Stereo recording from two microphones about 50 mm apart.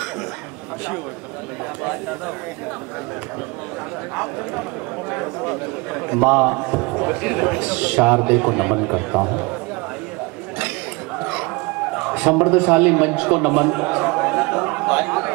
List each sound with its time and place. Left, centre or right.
5.1 s a man's voice: centre
12.1 s a man's voice: right
13.2 s a sound: right